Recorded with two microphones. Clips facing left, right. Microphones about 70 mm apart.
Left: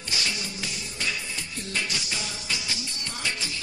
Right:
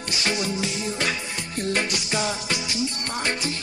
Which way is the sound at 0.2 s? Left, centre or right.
Right.